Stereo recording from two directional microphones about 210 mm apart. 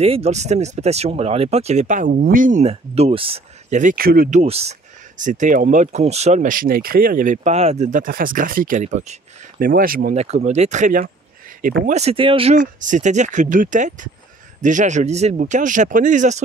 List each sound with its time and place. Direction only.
0.0 s speech: 30° right (ahead or behind)
4.4 s speech: 30° right (ahead or behind)